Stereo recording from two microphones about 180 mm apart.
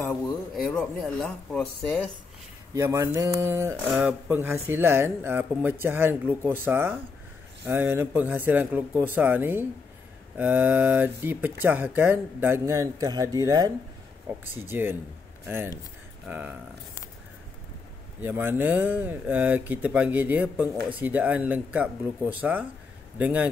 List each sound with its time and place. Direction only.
0.7 s speech: 5° left (ahead or behind)
2.7 s speech: 15° right (ahead or behind)
18.2 s speech: 10° right (ahead or behind)